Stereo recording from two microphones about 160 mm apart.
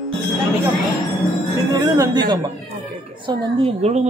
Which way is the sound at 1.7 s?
25° right (ahead or behind).